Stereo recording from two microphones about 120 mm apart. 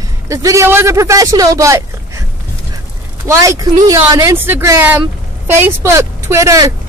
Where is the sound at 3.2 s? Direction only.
25° right (ahead or behind).